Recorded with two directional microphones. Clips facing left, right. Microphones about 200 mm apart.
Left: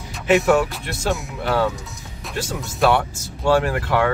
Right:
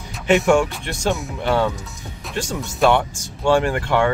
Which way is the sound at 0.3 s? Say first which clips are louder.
Right 1 dB; centre (ahead or behind).